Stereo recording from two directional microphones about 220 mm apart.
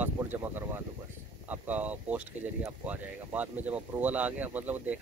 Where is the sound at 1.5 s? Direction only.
5° right (ahead or behind).